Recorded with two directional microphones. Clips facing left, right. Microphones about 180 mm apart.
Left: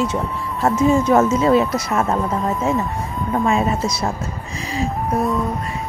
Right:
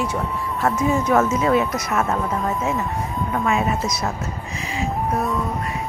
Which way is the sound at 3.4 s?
30° left (ahead or behind).